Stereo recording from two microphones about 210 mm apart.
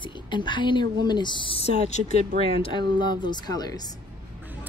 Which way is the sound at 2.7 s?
20° left (ahead or behind).